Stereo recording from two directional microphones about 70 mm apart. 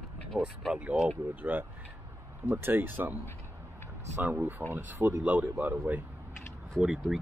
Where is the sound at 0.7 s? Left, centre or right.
Centre.